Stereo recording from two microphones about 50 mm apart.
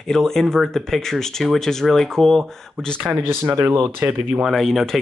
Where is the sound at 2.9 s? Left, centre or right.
Right.